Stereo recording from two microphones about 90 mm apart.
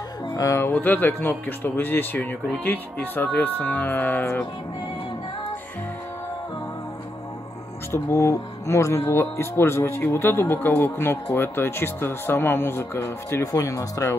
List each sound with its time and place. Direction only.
0.4 s speech: 30° left (ahead or behind)
7.9 s speech: 35° left (ahead or behind)